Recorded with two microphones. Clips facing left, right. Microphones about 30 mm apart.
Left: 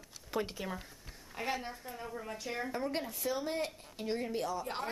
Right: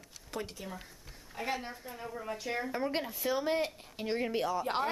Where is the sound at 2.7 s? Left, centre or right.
Centre.